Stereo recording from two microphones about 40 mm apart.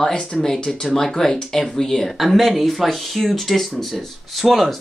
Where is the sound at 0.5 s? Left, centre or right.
Left.